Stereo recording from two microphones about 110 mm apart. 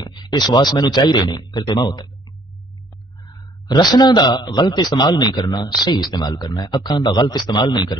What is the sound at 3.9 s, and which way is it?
A man's voice, 40° left (ahead or behind).